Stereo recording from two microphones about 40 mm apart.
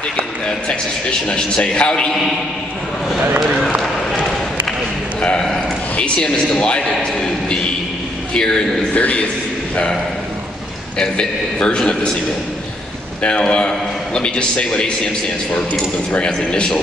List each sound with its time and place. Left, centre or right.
0.5 s a man's voice: left
5.9 s a man's voice: left
8.3 s a man's voice: left
8.9 s a man's voice: left
11.0 s a man's voice: left
13.2 s a man's voice: left
16.4 s a man's voice: left